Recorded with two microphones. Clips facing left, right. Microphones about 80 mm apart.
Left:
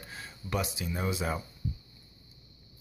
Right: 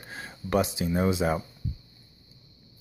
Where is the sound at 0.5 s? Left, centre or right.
Right.